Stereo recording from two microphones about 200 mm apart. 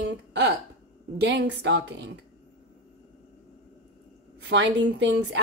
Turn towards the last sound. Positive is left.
turn(degrees=-60)  # may be behind; listen again after turning